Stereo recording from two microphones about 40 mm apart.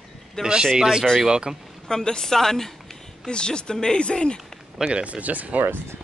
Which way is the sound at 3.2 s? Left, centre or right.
Left.